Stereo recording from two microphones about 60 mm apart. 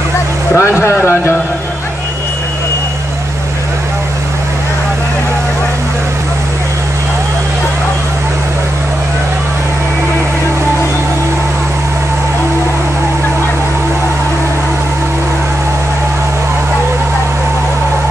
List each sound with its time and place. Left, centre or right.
0.6 s speech: left